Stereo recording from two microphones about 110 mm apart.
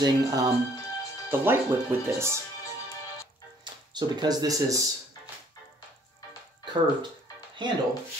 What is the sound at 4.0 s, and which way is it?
Speech, 40° right (ahead or behind).